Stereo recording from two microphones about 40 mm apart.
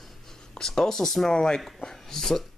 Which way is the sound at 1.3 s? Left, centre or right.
Centre.